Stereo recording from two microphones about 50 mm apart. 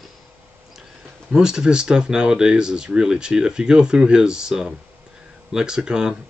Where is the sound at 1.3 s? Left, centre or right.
Centre.